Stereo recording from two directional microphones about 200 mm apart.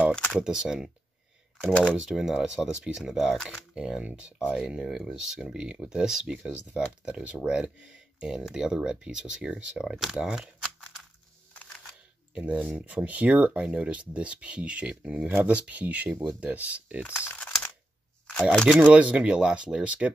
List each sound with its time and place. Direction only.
0.1 s speech: centre (ahead or behind)
12.4 s speech: 5° right (ahead or behind)
17.0 s typing: 10° left (ahead or behind)
18.5 s speech: 5° left (ahead or behind)
18.8 s speech: 5° right (ahead or behind)